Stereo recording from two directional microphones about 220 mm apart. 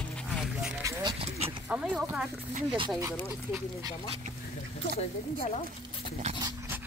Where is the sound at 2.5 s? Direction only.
25° right (ahead or behind).